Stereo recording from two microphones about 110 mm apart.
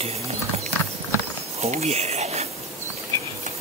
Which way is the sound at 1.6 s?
75° right (ahead or behind).